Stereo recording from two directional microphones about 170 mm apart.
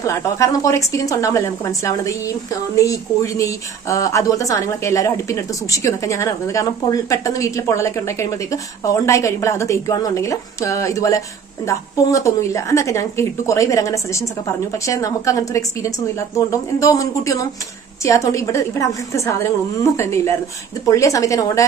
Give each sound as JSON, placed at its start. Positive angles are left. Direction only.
{"t": 0.0, "sound": "a woman's voice", "side_deg": 20}